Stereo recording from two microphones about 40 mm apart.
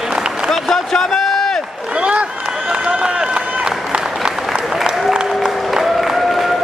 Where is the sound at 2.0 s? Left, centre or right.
Right.